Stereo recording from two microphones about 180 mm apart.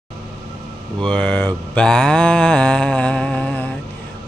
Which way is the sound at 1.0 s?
5° left (ahead or behind).